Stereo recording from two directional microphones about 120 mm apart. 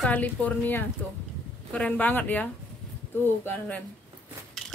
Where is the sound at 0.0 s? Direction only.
10° left (ahead or behind).